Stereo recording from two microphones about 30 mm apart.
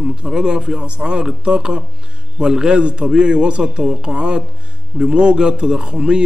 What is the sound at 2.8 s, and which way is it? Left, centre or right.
A man's voice, right.